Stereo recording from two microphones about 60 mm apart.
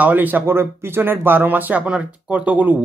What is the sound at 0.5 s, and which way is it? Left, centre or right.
Speech, right.